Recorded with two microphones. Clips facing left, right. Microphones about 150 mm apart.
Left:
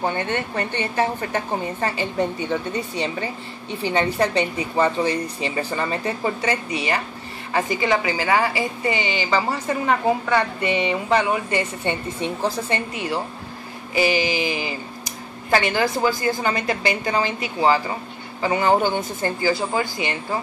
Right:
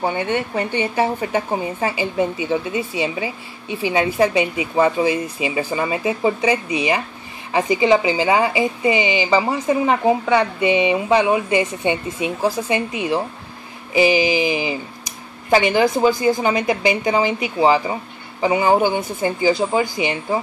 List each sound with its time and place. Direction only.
0.0 s a woman's voice: 10° right (ahead or behind)